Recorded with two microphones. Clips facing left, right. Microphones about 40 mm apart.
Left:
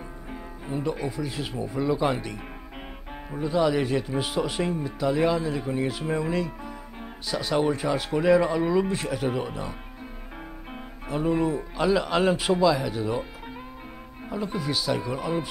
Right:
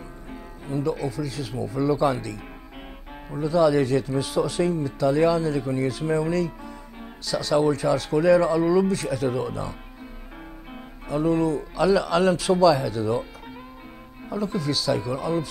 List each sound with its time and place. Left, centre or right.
0.3 s speech: centre
14.3 s speech: centre